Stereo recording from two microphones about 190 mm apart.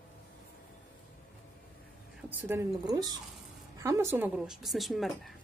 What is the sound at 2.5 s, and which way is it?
A woman's voice, 15° right (ahead or behind).